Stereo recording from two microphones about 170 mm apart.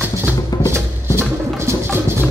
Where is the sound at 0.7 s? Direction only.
15° right (ahead or behind).